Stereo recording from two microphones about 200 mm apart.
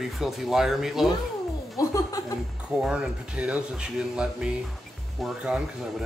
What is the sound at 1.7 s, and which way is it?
Chuckle, 15° left (ahead or behind).